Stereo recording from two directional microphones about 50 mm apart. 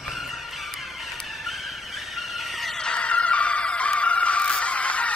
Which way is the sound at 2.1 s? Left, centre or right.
Centre.